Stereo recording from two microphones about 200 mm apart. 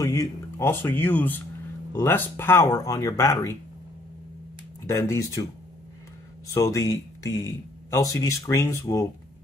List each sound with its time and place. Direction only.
0.0 s speech: 15° left (ahead or behind)
4.8 s speech: 15° left (ahead or behind)